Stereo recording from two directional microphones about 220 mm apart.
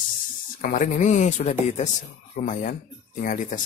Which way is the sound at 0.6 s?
40° left (ahead or behind).